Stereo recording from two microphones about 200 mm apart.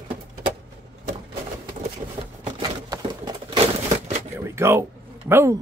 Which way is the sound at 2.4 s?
20° right (ahead or behind).